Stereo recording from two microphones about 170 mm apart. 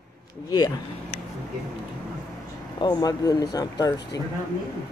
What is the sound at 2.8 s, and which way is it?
Speech, 25° left (ahead or behind).